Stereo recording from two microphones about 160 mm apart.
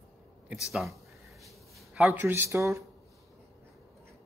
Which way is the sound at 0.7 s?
Centre (ahead or behind).